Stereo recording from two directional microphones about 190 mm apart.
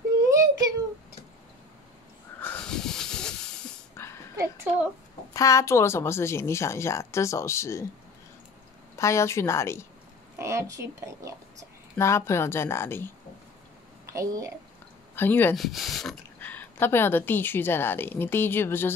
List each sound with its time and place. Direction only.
2.4 s hiss: 5° left (ahead or behind)
4.4 s a sound: 15° right (ahead or behind)
5.3 s speech: 15° left (ahead or behind)
8.9 s speech: 15° left (ahead or behind)
10.3 s a woman's voice: 15° right (ahead or behind)
12.0 s speech: 15° left (ahead or behind)
14.1 s a woman's voice: 15° right (ahead or behind)
15.1 s speech: 10° left (ahead or behind)
15.5 s speech: centre (ahead or behind)